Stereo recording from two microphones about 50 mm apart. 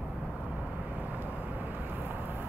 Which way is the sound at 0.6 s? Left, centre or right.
Right.